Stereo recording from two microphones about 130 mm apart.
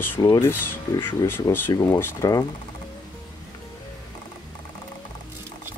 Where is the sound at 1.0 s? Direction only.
15° left (ahead or behind).